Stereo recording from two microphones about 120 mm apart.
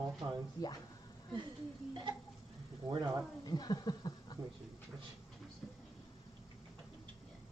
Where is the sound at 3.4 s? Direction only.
35° left (ahead or behind).